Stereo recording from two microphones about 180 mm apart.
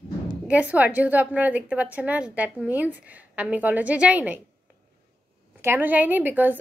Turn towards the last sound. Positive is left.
turn(degrees=-10)  # may be behind; listen again after turning